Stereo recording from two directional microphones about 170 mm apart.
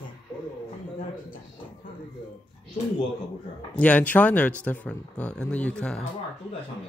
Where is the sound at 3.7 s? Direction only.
10° left (ahead or behind).